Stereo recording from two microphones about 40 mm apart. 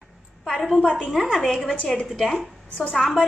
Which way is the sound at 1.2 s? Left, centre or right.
Centre.